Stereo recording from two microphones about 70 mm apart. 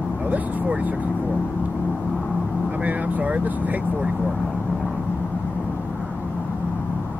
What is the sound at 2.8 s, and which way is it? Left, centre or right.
Speech, right.